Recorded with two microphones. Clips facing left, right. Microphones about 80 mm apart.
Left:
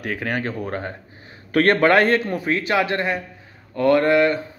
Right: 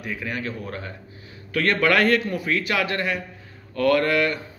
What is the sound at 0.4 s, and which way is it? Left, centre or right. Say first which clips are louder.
Speech: left 5 dB; left.